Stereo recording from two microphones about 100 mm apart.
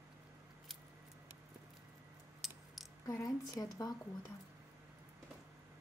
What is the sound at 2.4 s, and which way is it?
Mechanisms, centre (ahead or behind).